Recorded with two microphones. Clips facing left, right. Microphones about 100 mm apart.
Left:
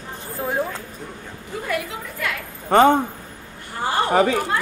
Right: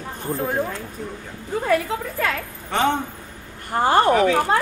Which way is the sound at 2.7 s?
45° left (ahead or behind).